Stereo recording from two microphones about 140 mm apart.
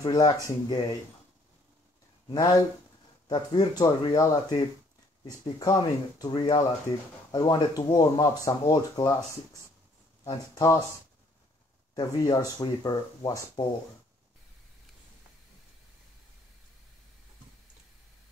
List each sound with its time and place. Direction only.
0.0 s speech: 25° left (ahead or behind)
2.2 s speech: 30° left (ahead or behind)
11.9 s speech: 30° left (ahead or behind)